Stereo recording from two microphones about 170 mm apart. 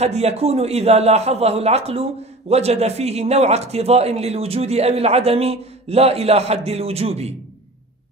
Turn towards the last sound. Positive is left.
turn(degrees=-35)  # may be behind; listen again after turning